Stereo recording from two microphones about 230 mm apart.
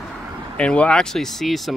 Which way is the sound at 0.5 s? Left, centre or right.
Centre.